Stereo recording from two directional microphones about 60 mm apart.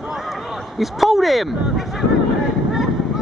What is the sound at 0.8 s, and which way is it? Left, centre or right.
Speech, centre.